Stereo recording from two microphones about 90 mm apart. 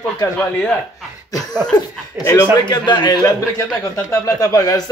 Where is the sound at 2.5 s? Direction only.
55° left (ahead or behind).